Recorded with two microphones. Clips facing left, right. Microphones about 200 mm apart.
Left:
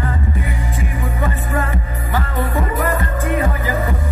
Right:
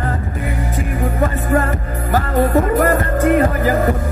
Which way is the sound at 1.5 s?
45° right (ahead or behind).